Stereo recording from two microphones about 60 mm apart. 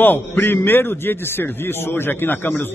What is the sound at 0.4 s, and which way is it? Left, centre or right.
A man's voice, left.